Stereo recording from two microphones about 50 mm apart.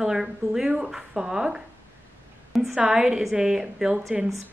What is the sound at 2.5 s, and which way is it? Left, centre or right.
Speech, centre.